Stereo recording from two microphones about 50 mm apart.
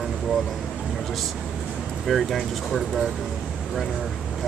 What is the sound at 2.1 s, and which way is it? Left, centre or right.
Speech, centre.